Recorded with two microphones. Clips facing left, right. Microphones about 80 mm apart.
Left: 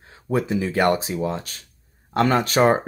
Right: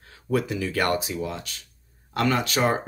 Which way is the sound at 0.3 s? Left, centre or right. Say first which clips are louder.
Left 3 dB; left.